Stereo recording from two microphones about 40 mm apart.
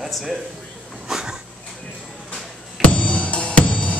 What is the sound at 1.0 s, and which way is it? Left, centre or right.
Dog, centre.